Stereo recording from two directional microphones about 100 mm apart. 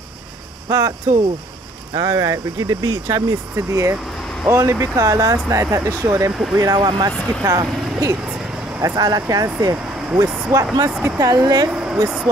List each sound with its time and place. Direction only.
0.7 s speech: 35° right (ahead or behind)
2.0 s speech: 35° right (ahead or behind)
7.4 s speech: 35° right (ahead or behind)
11.7 s vehicle: 5° right (ahead or behind)